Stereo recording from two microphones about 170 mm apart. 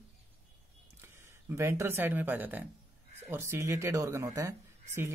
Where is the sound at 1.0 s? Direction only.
15° right (ahead or behind).